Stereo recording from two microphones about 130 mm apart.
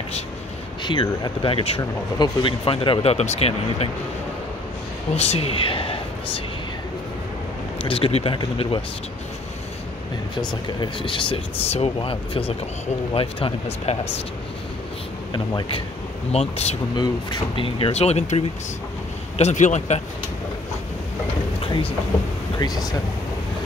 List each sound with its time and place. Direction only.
0.8 s speech: 35° left (ahead or behind)
1.5 s speech: 45° left (ahead or behind)
1.8 s speech: 30° left (ahead or behind); by 3.9 s 50° left (ahead or behind)
5.1 s speech: 50° left (ahead or behind)
7.8 s speech: 45° left (ahead or behind)
10.5 s speech: 35° left (ahead or behind)
13.9 s a man's voice: 55° left (ahead or behind)
15.3 s speech: 35° left (ahead or behind)
16.3 s speech: 50° left (ahead or behind)
16.9 s a man's voice: 35° left (ahead or behind); by 20.0 s 65° left (ahead or behind)